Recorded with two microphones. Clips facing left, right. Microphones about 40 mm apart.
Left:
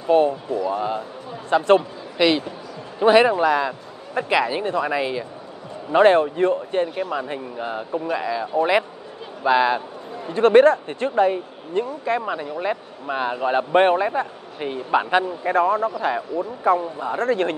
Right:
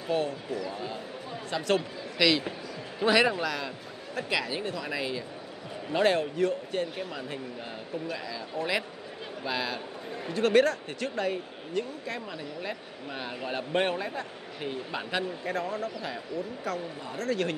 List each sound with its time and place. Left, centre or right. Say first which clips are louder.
0.1 s a man's voice: left 12 dB; left
0.5 s a man's voice: left 11 dB; centre